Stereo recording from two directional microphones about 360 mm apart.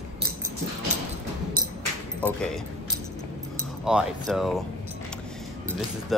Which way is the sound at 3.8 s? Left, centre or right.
Centre.